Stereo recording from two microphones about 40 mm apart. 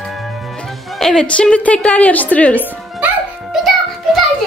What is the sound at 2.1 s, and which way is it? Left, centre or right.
Speech, left.